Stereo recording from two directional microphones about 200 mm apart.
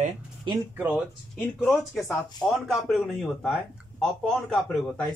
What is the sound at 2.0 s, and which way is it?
Speech, centre (ahead or behind).